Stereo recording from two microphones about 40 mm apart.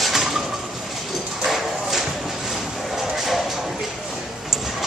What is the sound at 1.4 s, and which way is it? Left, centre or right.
Clip-clop, centre.